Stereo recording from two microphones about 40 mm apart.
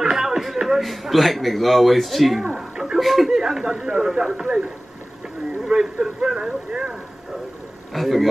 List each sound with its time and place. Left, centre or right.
0.0 s a sound: centre
0.6 s speech: centre
2.4 s a sound: centre
3.0 s speech: centre
5.7 s speech: centre
7.9 s speech: centre